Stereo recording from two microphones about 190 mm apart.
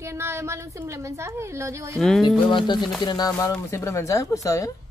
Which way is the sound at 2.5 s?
25° left (ahead or behind).